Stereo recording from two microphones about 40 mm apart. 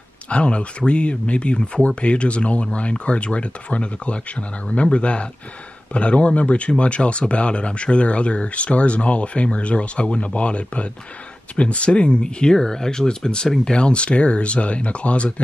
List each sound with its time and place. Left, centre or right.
0.3 s speech: left